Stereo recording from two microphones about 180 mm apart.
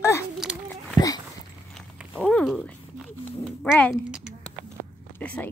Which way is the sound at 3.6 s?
5° left (ahead or behind).